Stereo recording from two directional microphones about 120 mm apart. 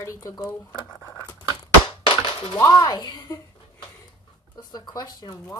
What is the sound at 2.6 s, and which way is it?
Speech, 35° left (ahead or behind).